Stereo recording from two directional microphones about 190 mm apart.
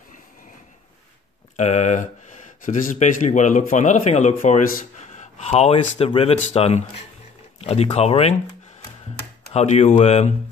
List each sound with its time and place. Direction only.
1.6 s speech: 35° left (ahead or behind)
9.5 s speech: 35° left (ahead or behind)